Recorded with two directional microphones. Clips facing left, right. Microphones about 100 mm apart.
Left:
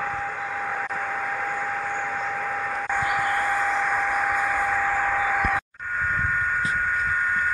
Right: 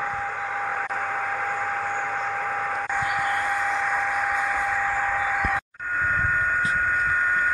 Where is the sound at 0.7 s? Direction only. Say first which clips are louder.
Right 1 dB; 30° right (ahead or behind).